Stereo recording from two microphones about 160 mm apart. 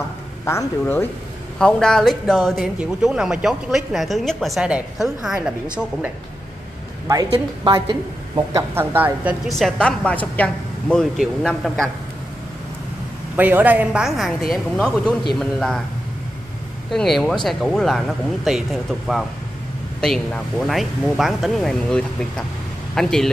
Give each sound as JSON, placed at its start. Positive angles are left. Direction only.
{"t": 0.5, "sound": "speech", "side_deg": 15}
{"t": 1.6, "sound": "a man's voice", "side_deg": 5}
{"t": 7.3, "sound": "a woman's voice", "side_deg": -30}
{"t": 8.7, "sound": "a woman's voice", "side_deg": -10}
{"t": 9.6, "sound": "a man's voice", "side_deg": 5}
{"t": 13.4, "sound": "a man's voice", "side_deg": -10}
{"t": 16.9, "sound": "a man's voice", "side_deg": 0}